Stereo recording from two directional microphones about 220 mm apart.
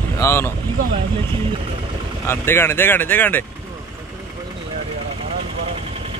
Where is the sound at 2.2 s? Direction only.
10° left (ahead or behind).